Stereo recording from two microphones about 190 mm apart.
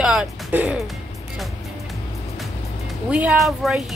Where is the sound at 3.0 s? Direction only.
5° right (ahead or behind).